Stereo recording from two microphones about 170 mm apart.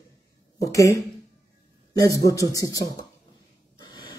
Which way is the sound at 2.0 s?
20° left (ahead or behind).